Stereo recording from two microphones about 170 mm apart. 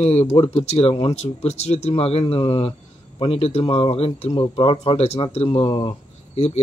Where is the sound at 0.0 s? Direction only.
35° left (ahead or behind).